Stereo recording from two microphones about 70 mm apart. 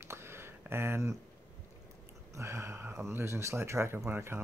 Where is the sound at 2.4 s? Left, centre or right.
Right.